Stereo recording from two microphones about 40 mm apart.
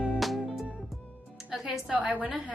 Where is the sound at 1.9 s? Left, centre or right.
Right.